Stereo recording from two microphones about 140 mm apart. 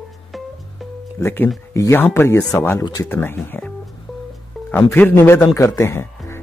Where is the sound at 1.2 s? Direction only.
15° left (ahead or behind).